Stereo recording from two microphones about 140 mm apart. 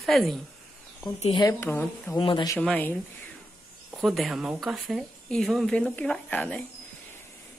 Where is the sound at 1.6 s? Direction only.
15° left (ahead or behind).